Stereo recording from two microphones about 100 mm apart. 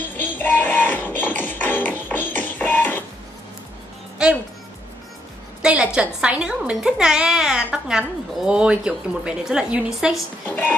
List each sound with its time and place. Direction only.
0.2 s music: 20° left (ahead or behind)
4.2 s music: 10° right (ahead or behind)
5.6 s a sound: 10° right (ahead or behind)
5.9 s speech: 10° right (ahead or behind)
10.5 s music: 15° left (ahead or behind)